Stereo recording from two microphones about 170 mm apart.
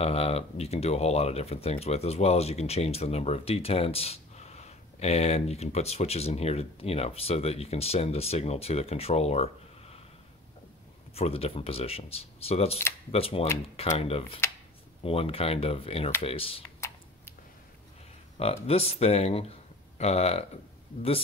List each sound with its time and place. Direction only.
0.0 s speech: 35° left (ahead or behind)
11.1 s speech: 35° left (ahead or behind)
18.4 s speech: 35° left (ahead or behind)